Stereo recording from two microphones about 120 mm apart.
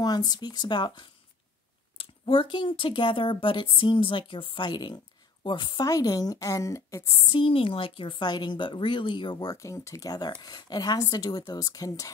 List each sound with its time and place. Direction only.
0.0 s speech: 35° left (ahead or behind)
7.3 s speech: 50° left (ahead or behind); by 12.1 s 30° left (ahead or behind)